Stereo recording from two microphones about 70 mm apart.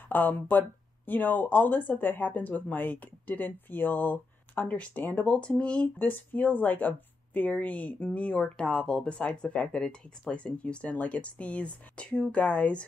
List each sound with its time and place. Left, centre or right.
0.1 s speech: left